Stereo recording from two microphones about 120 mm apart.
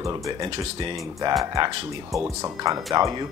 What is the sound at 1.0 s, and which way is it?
Speech, 25° right (ahead or behind).